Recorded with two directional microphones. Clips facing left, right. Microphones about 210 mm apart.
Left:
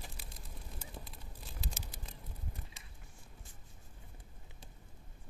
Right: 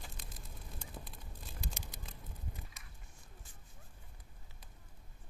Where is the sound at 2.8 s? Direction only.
30° left (ahead or behind).